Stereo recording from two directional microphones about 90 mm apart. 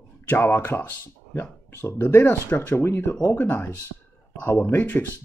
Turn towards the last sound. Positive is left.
turn(degrees=20)  # may be behind; listen again after turning